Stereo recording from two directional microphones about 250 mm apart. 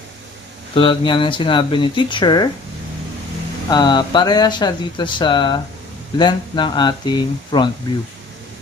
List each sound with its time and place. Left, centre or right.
0.7 s speech: left
3.7 s speech: centre